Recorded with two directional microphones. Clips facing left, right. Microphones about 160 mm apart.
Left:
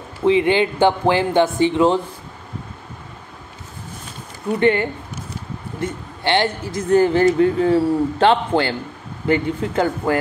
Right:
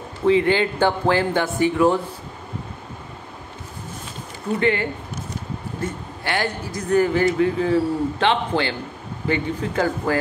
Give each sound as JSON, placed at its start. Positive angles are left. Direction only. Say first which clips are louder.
{"t": 0.2, "sound": "speech", "louder": "left 2 dB", "side_deg": 20}
{"t": 4.6, "sound": "speech", "louder": "left 4 dB", "side_deg": 25}
{"t": 6.2, "sound": "speech", "louder": "left 5 dB", "side_deg": 25}